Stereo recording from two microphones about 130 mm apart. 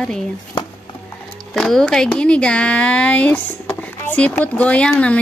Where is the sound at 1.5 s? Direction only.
5° left (ahead or behind).